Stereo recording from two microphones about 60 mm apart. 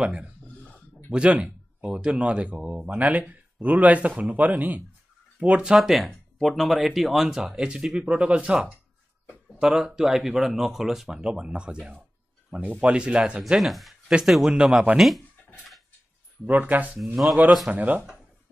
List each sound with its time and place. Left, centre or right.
0.0 s speech: centre
5.8 s speech: centre
9.6 s speech: centre
13.6 s speech: centre
15.0 s speech: centre
16.4 s speech: right